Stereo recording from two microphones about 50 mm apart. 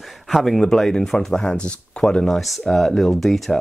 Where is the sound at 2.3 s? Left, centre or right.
Centre.